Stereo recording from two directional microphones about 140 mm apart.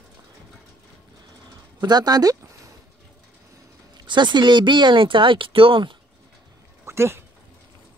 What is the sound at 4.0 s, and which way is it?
Speech, 35° right (ahead or behind).